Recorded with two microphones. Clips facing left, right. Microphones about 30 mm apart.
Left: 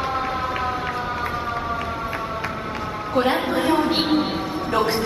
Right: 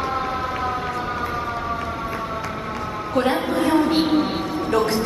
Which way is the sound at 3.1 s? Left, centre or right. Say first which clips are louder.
Even; centre.